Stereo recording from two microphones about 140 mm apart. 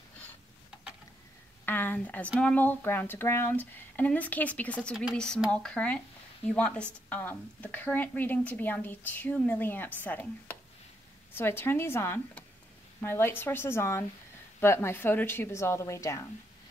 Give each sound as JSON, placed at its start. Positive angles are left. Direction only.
{"t": 1.7, "sound": "speech", "side_deg": 15}